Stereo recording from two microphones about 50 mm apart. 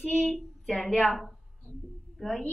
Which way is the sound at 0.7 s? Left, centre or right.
Centre.